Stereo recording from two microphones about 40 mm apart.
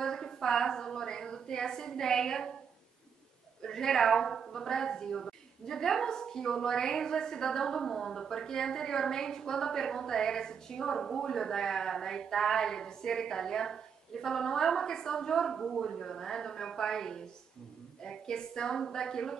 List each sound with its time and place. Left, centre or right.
0.0 s a woman's voice: centre
3.6 s a woman's voice: centre